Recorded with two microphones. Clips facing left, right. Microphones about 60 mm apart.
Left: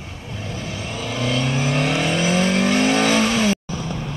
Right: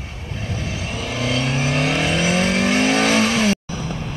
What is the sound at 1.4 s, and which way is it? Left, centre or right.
Vehicle, right.